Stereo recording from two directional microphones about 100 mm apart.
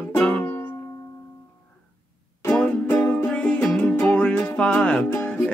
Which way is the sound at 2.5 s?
10° left (ahead or behind).